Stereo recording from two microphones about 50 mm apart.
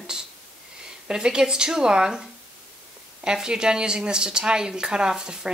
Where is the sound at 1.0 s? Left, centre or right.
Centre.